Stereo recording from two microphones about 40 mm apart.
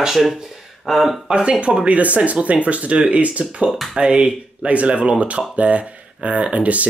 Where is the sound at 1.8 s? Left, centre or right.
Right.